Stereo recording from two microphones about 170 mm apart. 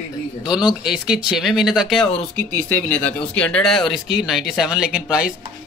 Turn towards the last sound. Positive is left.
turn(degrees=-5)  # may be behind; listen again after turning